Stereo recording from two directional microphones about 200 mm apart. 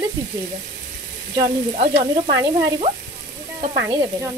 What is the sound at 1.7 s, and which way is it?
Frying, 35° right (ahead or behind).